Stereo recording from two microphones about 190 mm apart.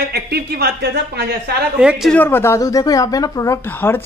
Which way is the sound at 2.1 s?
10° left (ahead or behind).